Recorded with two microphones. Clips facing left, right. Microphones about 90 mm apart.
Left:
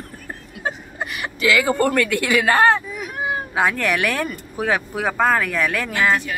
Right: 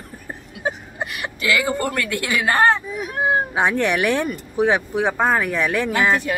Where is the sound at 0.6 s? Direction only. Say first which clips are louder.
Right 1 dB; 20° right (ahead or behind).